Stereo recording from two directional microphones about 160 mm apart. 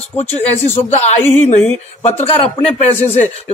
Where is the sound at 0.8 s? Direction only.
45° left (ahead or behind).